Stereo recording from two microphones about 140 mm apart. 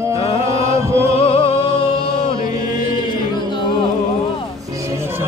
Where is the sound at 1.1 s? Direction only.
45° left (ahead or behind).